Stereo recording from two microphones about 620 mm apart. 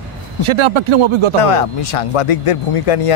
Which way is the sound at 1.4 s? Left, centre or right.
Left.